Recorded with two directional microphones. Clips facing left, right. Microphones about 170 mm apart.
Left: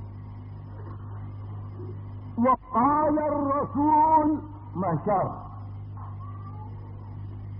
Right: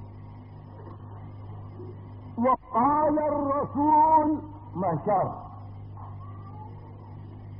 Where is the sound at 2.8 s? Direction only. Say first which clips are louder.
Even; 20° right (ahead or behind).